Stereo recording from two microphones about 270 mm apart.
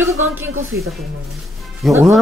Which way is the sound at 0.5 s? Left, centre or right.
Right.